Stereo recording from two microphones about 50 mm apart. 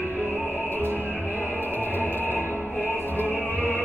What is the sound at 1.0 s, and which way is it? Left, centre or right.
Music, left.